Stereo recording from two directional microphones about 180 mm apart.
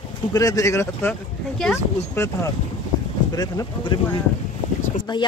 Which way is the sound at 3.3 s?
25° left (ahead or behind).